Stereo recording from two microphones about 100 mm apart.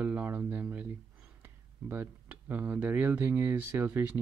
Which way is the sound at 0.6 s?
15° right (ahead or behind).